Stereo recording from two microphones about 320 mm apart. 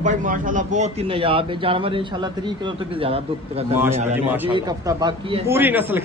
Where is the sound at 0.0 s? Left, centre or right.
Right.